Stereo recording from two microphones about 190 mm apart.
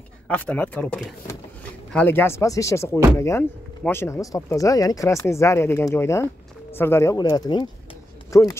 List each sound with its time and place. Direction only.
0.3 s speech: 5° left (ahead or behind)